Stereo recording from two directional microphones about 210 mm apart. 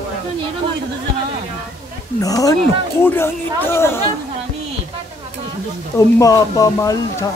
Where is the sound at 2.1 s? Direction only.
15° left (ahead or behind).